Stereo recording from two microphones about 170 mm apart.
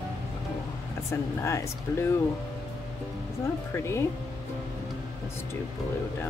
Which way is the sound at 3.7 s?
15° left (ahead or behind).